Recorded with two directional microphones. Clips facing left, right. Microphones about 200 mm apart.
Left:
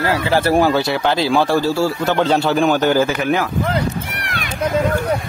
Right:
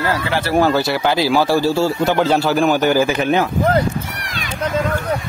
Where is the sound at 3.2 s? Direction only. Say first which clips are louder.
Right 2 dB; 25° right (ahead or behind).